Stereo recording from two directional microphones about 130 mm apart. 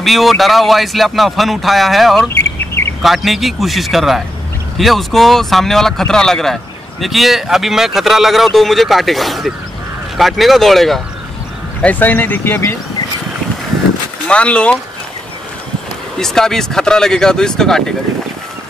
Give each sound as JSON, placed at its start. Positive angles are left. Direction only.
{"t": 0.0, "sound": "speech", "side_deg": 0}
{"t": 2.2, "sound": "bird", "side_deg": 20}
{"t": 3.0, "sound": "speech", "side_deg": 0}
{"t": 11.8, "sound": "speech", "side_deg": 15}
{"t": 14.2, "sound": "speech", "side_deg": 10}
{"t": 16.2, "sound": "speech", "side_deg": 5}